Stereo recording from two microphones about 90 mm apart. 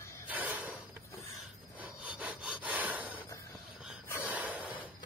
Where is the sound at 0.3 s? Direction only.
15° right (ahead or behind).